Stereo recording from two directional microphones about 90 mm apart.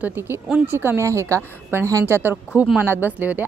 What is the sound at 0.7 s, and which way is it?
Speech, 25° right (ahead or behind).